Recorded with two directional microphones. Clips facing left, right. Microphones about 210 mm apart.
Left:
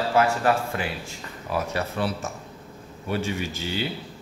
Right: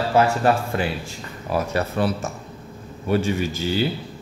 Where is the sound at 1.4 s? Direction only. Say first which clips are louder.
Right 4 dB; 40° right (ahead or behind).